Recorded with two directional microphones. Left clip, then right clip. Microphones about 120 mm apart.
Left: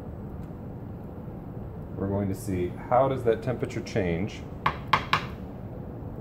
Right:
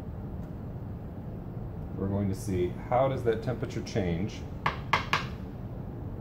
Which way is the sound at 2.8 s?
85° left.